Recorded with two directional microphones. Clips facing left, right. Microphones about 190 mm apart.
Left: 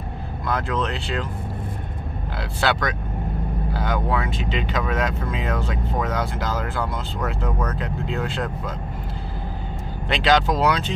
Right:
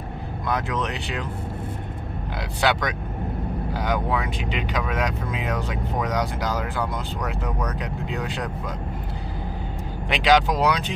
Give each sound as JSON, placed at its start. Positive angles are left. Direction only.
{"t": 0.5, "sound": "speech", "side_deg": -15}
{"t": 2.6, "sound": "speech", "side_deg": -15}
{"t": 10.0, "sound": "speech", "side_deg": -10}